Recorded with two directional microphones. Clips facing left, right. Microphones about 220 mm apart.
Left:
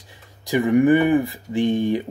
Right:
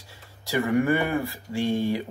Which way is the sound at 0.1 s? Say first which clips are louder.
Left 5 dB; 15° left (ahead or behind).